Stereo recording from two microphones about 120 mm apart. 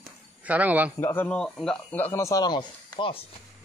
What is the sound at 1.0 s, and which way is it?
Speech, 20° left (ahead or behind).